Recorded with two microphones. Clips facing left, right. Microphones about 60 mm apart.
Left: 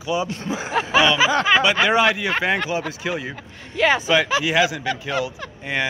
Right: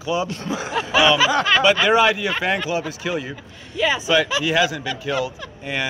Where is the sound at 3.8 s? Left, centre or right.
Left.